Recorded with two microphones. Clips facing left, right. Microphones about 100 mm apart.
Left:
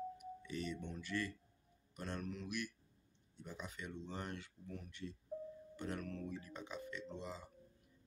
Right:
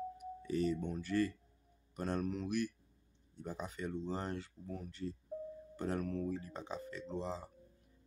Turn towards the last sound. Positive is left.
turn(degrees=-35)  # may be behind; listen again after turning